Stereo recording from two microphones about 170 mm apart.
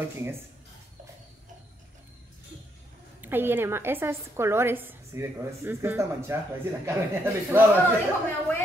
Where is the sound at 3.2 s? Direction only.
10° right (ahead or behind).